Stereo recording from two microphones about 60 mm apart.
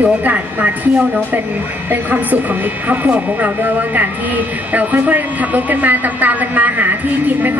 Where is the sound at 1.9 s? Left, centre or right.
Right.